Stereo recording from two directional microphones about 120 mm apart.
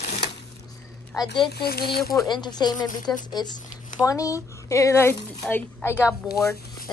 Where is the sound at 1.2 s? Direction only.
40° left (ahead or behind); by 6.1 s 20° left (ahead or behind).